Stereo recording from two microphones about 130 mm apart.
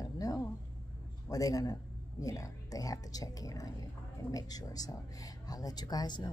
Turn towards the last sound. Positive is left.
turn(degrees=35)  # may be behind; listen again after turning